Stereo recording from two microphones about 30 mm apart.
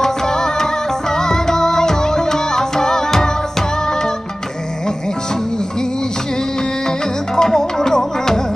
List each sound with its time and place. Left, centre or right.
0.0 s music: centre
6.9 s music: left